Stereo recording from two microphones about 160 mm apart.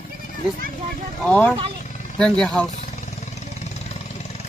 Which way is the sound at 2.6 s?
45° left (ahead or behind).